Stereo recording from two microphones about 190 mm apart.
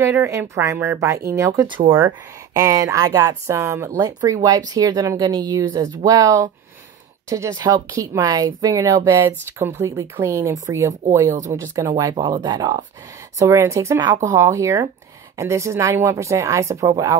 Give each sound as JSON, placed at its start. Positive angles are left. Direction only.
{"t": 0.0, "sound": "speech", "side_deg": -15}